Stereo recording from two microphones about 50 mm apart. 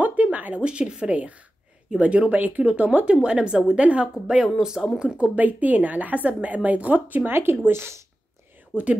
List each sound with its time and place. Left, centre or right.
0.0 s a sound: right
0.7 s a woman's voice: centre
7.3 s speech: right
8.7 s speech: right